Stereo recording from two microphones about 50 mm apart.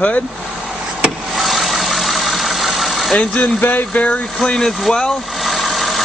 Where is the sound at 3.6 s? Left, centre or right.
Left.